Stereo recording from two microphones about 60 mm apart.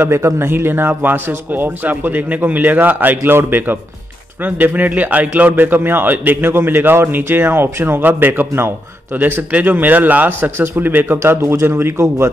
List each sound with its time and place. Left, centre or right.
0.0 s a man's voice: right